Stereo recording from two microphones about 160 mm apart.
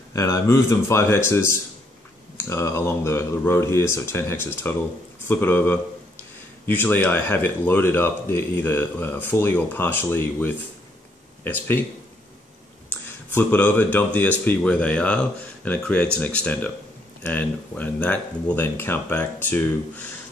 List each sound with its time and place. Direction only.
0.1 s speech: 20° left (ahead or behind)
13.3 s speech: 10° left (ahead or behind)